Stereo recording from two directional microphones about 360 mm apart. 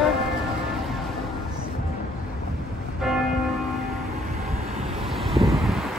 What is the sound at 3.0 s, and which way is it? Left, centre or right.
Church bell, centre.